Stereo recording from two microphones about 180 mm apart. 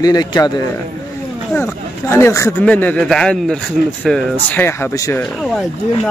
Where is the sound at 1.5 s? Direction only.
10° left (ahead or behind).